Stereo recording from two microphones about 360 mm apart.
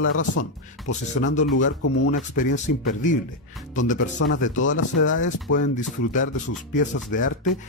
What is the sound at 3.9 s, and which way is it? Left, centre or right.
Speech, left.